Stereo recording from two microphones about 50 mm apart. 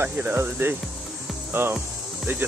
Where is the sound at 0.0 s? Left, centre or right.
Right.